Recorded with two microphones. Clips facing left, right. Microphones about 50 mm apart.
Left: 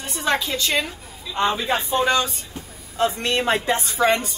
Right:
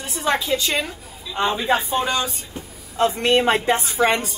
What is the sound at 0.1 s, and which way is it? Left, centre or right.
Speech, centre.